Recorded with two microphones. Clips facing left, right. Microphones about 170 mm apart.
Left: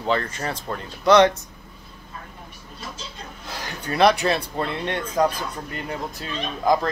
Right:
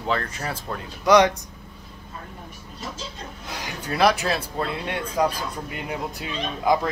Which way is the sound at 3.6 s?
5° right (ahead or behind).